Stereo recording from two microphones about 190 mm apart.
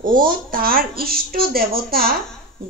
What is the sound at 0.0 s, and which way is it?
Speech, 45° right (ahead or behind).